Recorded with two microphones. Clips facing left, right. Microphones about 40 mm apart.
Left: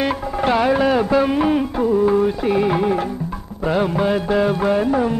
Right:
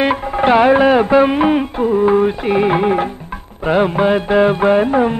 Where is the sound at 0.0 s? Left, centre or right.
Right.